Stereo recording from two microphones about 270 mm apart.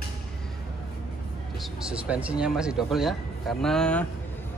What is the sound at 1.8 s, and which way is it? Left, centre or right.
Speech, centre.